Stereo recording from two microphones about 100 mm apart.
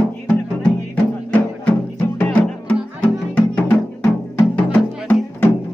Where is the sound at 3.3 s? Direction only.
20° left (ahead or behind).